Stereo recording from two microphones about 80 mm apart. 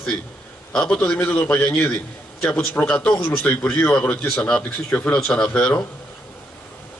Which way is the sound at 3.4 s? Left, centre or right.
Left.